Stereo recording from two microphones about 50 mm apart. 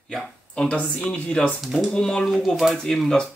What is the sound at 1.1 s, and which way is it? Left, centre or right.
Speech, left.